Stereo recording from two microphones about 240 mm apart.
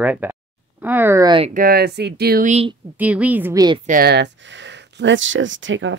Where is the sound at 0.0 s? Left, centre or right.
Centre.